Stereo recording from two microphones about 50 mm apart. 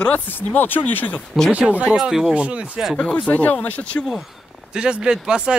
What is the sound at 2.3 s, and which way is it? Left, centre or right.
Speech, right.